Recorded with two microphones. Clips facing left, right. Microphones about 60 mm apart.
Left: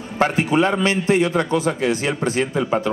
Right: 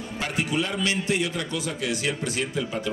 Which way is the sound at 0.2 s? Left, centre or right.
Left.